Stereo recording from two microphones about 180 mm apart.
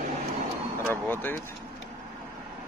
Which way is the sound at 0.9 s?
10° left (ahead or behind).